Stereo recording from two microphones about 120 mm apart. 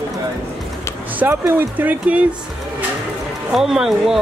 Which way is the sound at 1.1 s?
20° right (ahead or behind).